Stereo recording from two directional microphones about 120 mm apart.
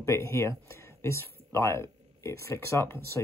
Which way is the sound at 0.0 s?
25° left (ahead or behind).